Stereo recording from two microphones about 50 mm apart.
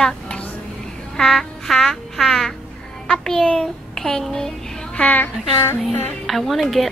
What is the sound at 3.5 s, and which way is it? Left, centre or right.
Child singing, centre.